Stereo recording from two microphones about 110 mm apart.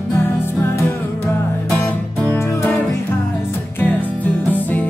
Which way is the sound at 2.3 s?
20° left (ahead or behind).